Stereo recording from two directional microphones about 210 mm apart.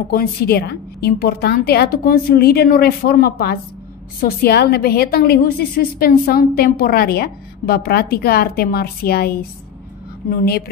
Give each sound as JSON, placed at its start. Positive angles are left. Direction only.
{"t": 0.1, "sound": "a woman's voice", "side_deg": 45}
{"t": 10.3, "sound": "a woman's voice", "side_deg": 45}